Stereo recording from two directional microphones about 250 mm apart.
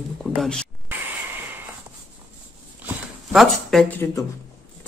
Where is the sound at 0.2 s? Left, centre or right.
Centre.